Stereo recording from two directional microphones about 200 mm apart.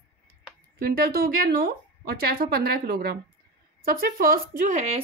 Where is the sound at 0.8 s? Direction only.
50° right (ahead or behind).